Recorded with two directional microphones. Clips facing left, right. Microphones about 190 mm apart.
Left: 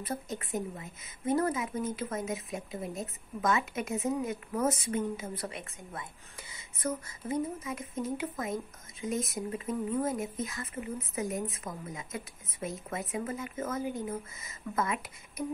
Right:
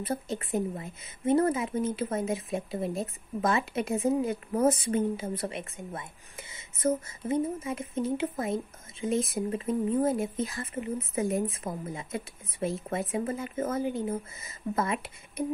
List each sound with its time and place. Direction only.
0.0 s a woman's voice: 30° right (ahead or behind)